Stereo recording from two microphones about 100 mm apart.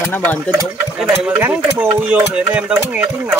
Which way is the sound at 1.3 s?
15° right (ahead or behind).